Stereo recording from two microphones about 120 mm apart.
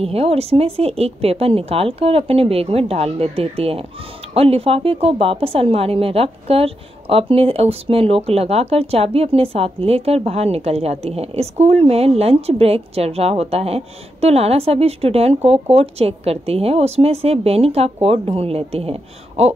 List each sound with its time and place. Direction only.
0.0 s a woman's voice: 55° right (ahead or behind)